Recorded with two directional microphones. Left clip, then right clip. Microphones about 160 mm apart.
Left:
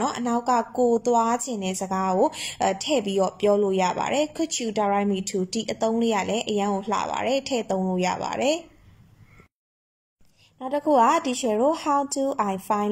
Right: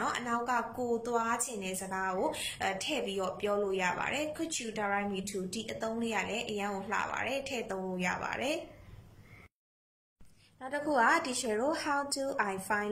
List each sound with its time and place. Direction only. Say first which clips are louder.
0.0 s speech: left 8 dB; 35° left (ahead or behind)
10.6 s a woman's voice: left 9 dB; 25° left (ahead or behind)